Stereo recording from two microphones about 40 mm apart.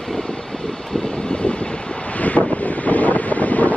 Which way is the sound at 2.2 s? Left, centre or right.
Left.